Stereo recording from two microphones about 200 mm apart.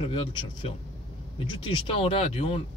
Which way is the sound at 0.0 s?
25° left (ahead or behind).